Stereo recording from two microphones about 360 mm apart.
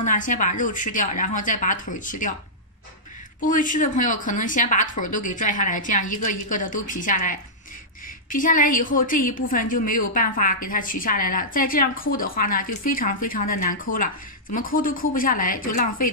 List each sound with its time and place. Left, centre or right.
0.0 s a woman's voice: left
3.3 s a woman's voice: left